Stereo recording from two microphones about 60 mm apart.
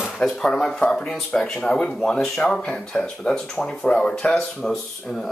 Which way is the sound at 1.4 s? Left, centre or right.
Centre.